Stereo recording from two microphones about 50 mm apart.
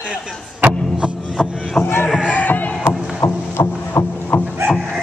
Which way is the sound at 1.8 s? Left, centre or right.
Left.